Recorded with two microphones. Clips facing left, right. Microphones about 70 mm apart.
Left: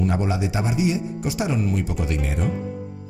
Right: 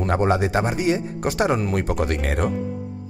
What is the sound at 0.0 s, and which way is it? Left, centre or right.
Speech, right.